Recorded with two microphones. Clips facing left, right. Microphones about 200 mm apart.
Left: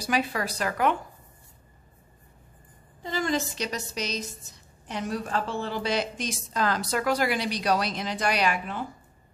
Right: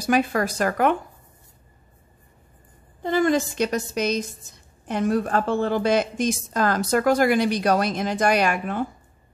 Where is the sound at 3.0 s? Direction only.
55° right (ahead or behind).